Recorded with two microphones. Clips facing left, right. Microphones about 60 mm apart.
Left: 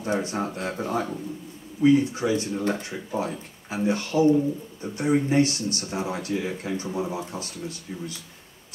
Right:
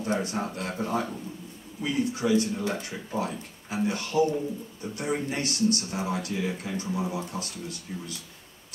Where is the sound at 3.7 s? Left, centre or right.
Left.